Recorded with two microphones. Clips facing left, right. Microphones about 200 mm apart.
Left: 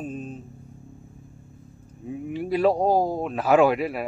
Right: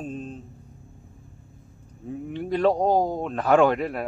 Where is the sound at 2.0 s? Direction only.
10° left (ahead or behind).